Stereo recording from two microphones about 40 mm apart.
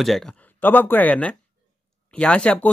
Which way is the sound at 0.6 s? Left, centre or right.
Left.